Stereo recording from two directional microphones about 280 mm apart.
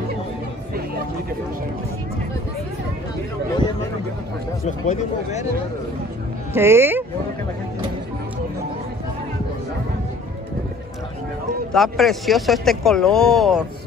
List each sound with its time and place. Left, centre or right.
4.6 s speech: left
6.5 s speech: centre
11.7 s speech: centre